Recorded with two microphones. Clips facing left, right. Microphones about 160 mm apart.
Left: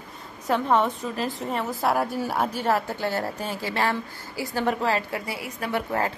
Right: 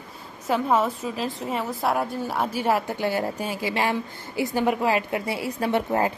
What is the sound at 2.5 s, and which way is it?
A woman's voice, 10° right (ahead or behind).